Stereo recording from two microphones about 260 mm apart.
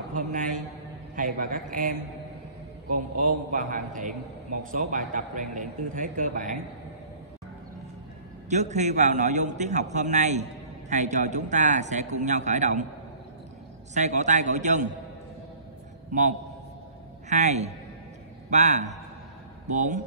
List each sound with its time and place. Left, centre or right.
0.1 s a man's voice: right
3.3 s a man's voice: right
8.5 s a man's voice: right
13.9 s a man's voice: right
16.1 s a man's voice: right